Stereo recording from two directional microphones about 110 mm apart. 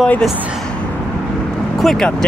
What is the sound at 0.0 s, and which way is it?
Speech, 10° left (ahead or behind).